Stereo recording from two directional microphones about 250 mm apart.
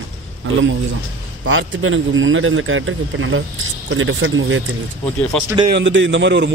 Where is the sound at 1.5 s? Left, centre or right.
Right.